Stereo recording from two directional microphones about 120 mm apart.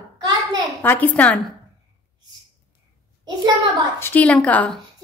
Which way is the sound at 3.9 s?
15° left (ahead or behind).